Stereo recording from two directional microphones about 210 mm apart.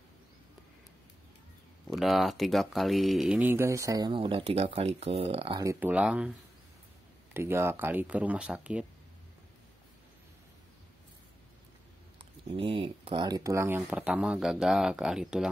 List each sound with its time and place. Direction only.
1.9 s speech: centre (ahead or behind); by 5.6 s 25° right (ahead or behind)
5.6 s speech: 10° right (ahead or behind)
7.3 s speech: 10° right (ahead or behind)
12.4 s speech: 25° right (ahead or behind); by 15.5 s 5° right (ahead or behind)